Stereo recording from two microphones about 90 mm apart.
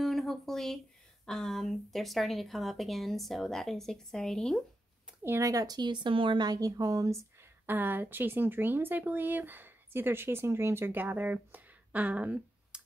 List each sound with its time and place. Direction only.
0.0 s a sound: centre (ahead or behind)
1.2 s speech: 5° left (ahead or behind)
5.2 s speech: 25° right (ahead or behind)
5.5 s a woman's voice: 45° right (ahead or behind)
7.6 s speech: 20° right (ahead or behind)